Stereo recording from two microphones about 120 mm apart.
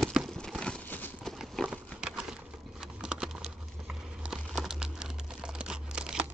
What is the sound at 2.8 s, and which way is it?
Typing, 5° right (ahead or behind).